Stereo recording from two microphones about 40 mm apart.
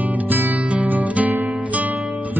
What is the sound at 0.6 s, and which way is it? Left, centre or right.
Music, right.